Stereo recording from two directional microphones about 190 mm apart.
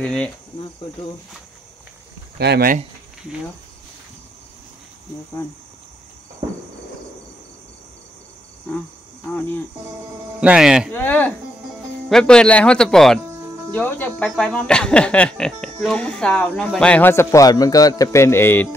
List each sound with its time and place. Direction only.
0.0 s speech: 5° left (ahead or behind)
2.3 s speech: 60° right (ahead or behind)
10.4 s speech: 5° right (ahead or behind)
10.9 s speech: 10° left (ahead or behind)